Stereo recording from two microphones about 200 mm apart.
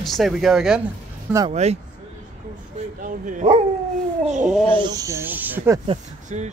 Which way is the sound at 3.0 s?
40° right (ahead or behind).